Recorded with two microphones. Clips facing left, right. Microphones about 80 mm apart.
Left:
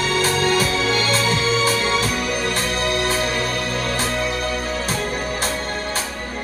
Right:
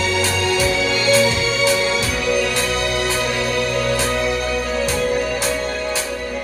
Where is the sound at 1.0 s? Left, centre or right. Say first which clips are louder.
Right 4 dB; left.